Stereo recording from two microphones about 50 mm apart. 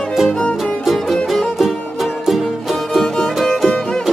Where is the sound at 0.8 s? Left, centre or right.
Centre.